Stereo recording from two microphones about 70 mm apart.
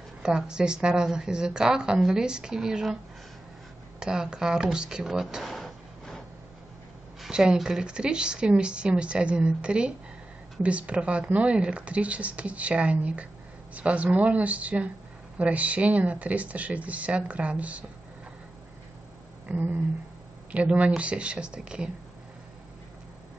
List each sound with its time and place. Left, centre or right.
0.2 s a woman's voice: centre
4.0 s speech: centre
7.2 s a woman's voice: centre
19.4 s a woman's voice: right